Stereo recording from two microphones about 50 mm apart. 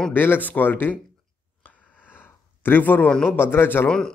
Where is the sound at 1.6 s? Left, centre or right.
Left.